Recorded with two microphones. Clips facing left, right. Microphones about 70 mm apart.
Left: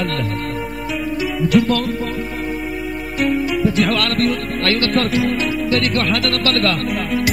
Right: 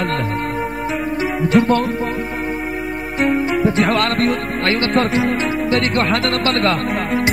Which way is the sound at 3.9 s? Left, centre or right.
Right.